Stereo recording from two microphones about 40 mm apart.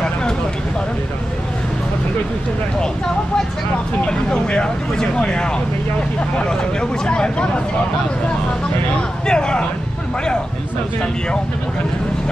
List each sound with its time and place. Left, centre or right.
4.1 s speech: left
9.3 s speech: left